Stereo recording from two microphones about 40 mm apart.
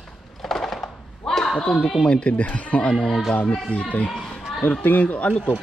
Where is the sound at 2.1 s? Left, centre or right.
Left.